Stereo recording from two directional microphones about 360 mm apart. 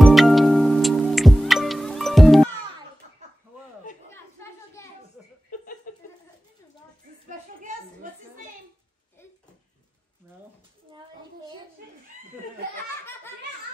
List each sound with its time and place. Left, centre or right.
0.0 s music: centre
4.1 s chatter: centre
7.2 s a sound: right
12.7 s belly laugh: centre